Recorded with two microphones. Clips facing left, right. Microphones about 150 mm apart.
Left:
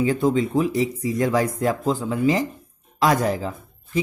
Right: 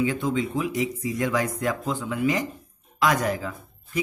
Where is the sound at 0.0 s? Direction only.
35° left (ahead or behind).